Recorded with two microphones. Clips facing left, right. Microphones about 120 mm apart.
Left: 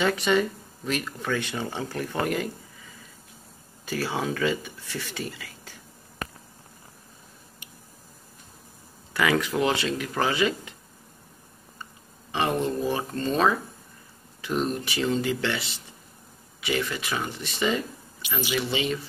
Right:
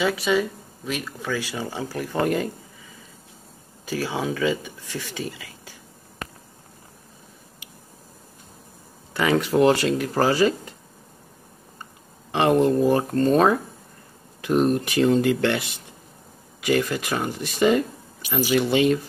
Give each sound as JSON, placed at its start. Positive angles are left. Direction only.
{"t": 0.0, "sound": "speech", "side_deg": -5}
{"t": 2.2, "sound": "speech", "side_deg": -30}
{"t": 3.8, "sound": "speech", "side_deg": -15}
{"t": 9.1, "sound": "speech", "side_deg": -30}
{"t": 9.6, "sound": "speech", "side_deg": -45}
{"t": 12.3, "sound": "speech", "side_deg": -55}